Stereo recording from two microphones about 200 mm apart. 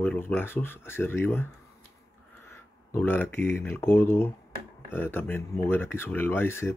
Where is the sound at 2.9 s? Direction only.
10° left (ahead or behind).